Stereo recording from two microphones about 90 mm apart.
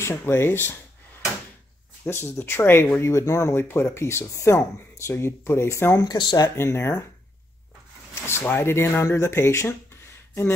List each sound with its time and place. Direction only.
0.0 s speech: 30° left (ahead or behind)
2.0 s speech: 25° left (ahead or behind)
6.0 s speech: 55° left (ahead or behind)
6.5 s speech: 30° left (ahead or behind)
8.1 s speech: 30° left (ahead or behind)